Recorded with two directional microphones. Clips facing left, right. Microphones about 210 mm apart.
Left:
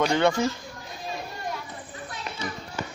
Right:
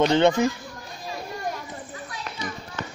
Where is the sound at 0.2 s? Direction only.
15° right (ahead or behind).